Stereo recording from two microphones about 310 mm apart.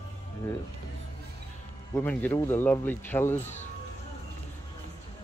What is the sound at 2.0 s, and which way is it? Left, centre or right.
Speech, centre.